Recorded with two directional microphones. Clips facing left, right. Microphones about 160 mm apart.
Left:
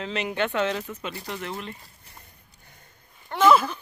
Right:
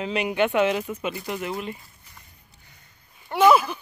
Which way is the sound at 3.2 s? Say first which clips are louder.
Right 2 dB; 10° right (ahead or behind).